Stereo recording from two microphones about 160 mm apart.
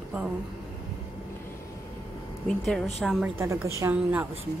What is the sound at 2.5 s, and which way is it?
Speech, centre (ahead or behind).